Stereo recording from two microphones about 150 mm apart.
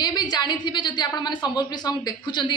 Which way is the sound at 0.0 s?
25° left (ahead or behind).